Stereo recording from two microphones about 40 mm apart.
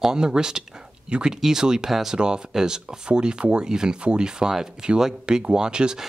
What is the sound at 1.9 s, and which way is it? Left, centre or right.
Speech, centre.